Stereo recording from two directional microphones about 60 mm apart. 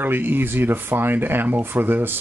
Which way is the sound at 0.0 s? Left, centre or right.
Right.